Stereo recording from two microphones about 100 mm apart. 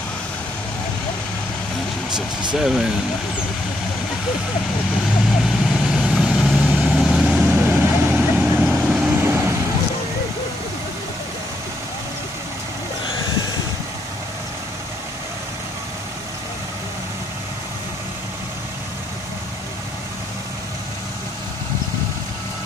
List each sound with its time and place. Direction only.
2.5 s speech: 5° right (ahead or behind)
5.4 s vehicle: 5° right (ahead or behind)
7.6 s vehicle: 20° right (ahead or behind)
8.4 s vehicle: 10° right (ahead or behind)
9.1 s vehicle: 25° right (ahead or behind)